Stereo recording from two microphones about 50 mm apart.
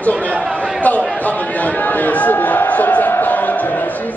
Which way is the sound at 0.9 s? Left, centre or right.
Left.